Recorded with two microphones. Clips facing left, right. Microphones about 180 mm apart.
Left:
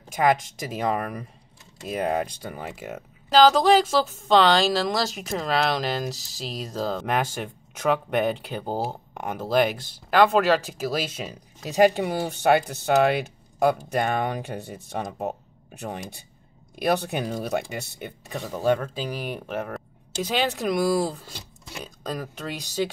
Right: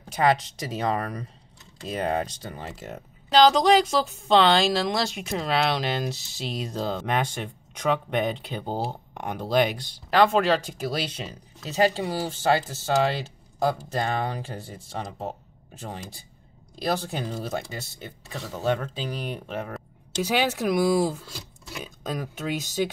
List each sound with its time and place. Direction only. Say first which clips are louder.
0.7 s speech: left 1 dB; 10° left (ahead or behind)